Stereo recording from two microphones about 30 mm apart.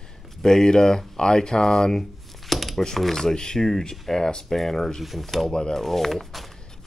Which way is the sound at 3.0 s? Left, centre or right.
Centre.